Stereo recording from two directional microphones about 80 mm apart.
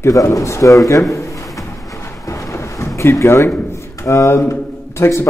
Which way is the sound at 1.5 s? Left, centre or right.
Left.